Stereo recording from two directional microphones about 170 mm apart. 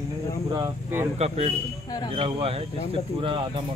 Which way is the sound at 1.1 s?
40° right (ahead or behind).